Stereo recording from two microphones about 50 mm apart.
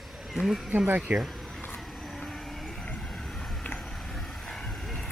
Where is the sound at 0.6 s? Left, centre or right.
Right.